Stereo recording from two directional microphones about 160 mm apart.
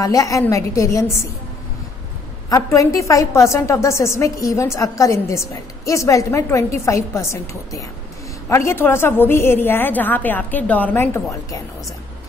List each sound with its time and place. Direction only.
0.0 s a woman's voice: 20° left (ahead or behind)
2.5 s a woman's voice: 20° left (ahead or behind)